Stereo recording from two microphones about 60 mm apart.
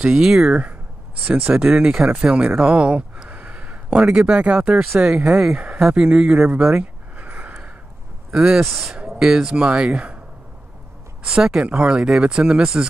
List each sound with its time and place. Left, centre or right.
0.0 s speech: centre
1.2 s speech: right
1.5 s speech: centre
2.6 s a sound: centre
4.0 s speech: centre
7.2 s gasp: right
8.3 s speech: centre
8.5 s speech: centre
11.2 s speech: centre